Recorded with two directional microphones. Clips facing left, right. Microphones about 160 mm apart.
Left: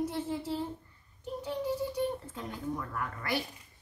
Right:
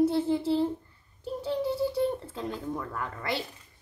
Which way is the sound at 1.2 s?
30° right (ahead or behind).